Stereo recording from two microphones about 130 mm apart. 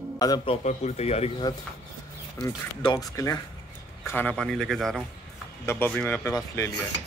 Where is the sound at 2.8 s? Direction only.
30° left (ahead or behind).